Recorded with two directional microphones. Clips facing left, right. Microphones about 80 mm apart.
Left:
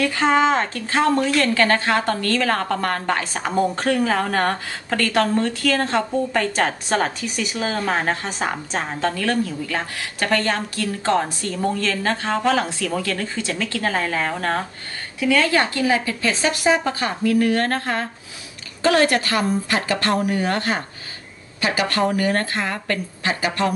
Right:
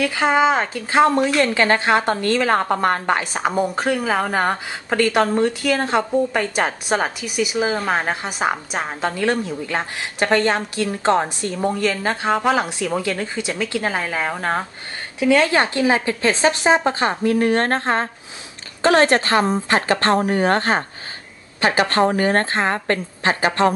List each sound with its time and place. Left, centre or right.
0.0 s a woman's voice: centre; by 23.7 s right